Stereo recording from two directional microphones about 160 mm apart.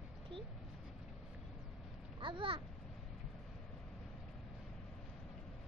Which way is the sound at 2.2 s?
30° right (ahead or behind).